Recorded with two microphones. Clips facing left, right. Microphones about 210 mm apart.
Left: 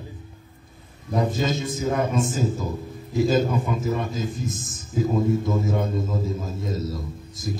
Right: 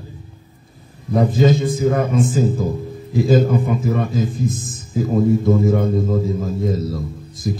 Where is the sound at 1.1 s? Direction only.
55° right (ahead or behind).